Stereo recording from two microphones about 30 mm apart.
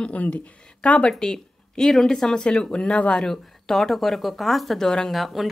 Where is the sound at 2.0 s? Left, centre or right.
Centre.